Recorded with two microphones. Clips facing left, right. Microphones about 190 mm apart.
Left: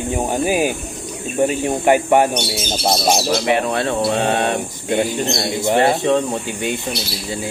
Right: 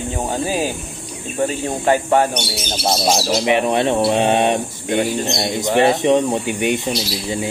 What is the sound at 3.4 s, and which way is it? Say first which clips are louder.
Speech: right 5 dB; 20° right (ahead or behind).